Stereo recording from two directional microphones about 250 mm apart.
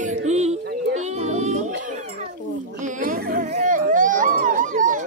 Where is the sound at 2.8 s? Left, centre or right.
Right.